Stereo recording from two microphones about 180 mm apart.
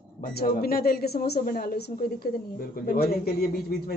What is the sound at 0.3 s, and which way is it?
A woman's voice, 55° left (ahead or behind).